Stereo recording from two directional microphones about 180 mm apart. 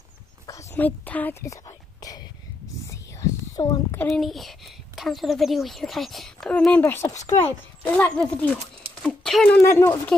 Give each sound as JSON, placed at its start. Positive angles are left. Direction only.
{"t": 0.5, "sound": "whispering", "side_deg": 15}
{"t": 2.9, "sound": "a sound", "side_deg": 20}
{"t": 4.0, "sound": "a child's voice", "side_deg": 0}